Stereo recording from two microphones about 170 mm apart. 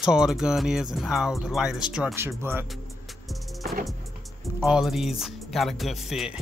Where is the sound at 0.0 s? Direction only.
5° right (ahead or behind).